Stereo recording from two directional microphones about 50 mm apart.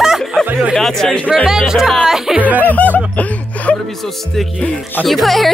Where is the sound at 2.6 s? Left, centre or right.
Left.